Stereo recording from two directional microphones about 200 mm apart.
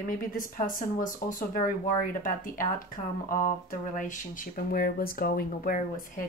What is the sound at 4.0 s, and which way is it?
A woman's voice, 40° left (ahead or behind).